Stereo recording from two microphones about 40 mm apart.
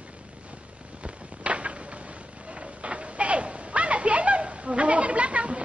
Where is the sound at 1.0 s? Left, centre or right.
Right.